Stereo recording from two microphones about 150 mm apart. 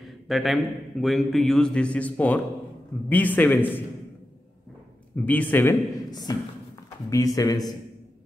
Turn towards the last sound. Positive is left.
turn(degrees=25)  # may be behind; listen again after turning